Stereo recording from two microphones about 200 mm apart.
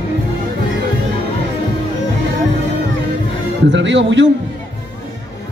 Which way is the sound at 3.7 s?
65° right (ahead or behind).